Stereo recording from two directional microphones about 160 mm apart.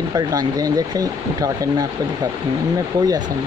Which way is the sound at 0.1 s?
20° right (ahead or behind).